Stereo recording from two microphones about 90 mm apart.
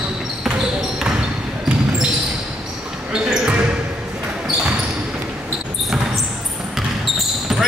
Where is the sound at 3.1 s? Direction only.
10° right (ahead or behind).